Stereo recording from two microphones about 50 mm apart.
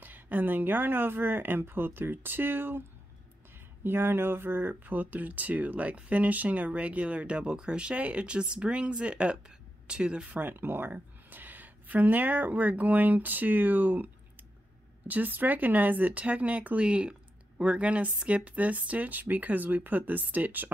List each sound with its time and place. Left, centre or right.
0.0 s speech: right; by 10.3 s centre
10.3 s speech: right